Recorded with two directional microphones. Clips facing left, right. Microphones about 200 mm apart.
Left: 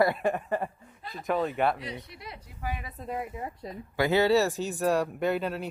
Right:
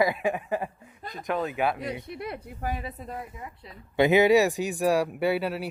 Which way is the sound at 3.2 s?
30° left (ahead or behind).